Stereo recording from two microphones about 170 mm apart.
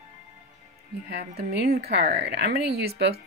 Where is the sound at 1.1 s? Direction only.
75° right (ahead or behind).